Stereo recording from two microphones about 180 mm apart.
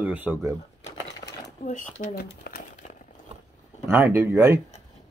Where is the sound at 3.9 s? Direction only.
10° right (ahead or behind).